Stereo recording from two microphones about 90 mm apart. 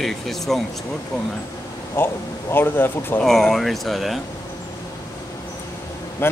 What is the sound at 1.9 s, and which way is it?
A man's voice, 25° left (ahead or behind).